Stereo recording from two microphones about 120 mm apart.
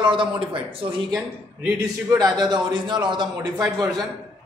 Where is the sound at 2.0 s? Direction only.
35° right (ahead or behind).